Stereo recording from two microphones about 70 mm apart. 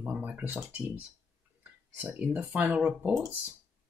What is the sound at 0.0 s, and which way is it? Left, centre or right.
Speech, right.